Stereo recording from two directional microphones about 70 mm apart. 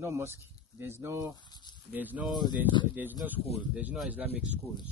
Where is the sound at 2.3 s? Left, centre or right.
Left.